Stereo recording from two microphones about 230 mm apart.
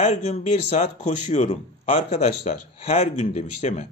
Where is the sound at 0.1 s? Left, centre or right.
Left.